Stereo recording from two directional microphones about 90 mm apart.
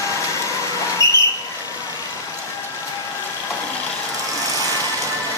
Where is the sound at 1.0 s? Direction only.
35° left (ahead or behind).